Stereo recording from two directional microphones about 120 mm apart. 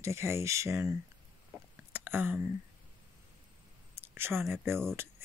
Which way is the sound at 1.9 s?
15° right (ahead or behind).